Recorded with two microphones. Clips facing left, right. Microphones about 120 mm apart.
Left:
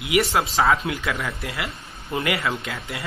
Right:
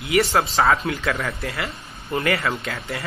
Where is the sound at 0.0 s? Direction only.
5° left (ahead or behind).